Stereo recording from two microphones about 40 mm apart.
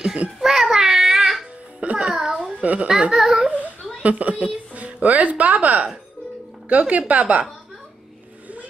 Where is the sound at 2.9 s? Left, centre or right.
Right.